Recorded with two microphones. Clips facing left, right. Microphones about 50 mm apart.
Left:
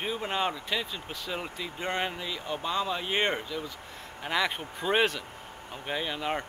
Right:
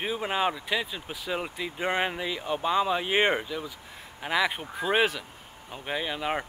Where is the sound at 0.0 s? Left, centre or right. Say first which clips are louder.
Right 3 dB; centre.